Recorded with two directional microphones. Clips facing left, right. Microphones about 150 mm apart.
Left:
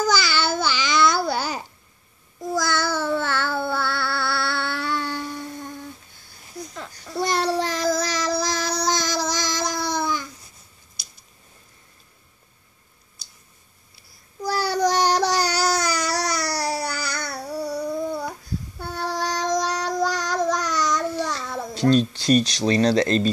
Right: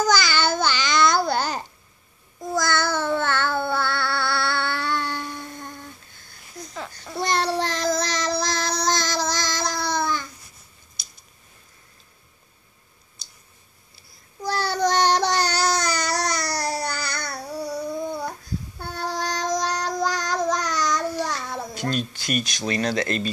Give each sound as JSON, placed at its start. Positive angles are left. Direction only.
{"t": 0.0, "sound": "babbling", "side_deg": 5}
{"t": 2.5, "sound": "a sound", "side_deg": 5}
{"t": 6.7, "sound": "child singing", "side_deg": -5}
{"t": 14.4, "sound": "child singing", "side_deg": 10}
{"t": 21.7, "sound": "speech", "side_deg": 30}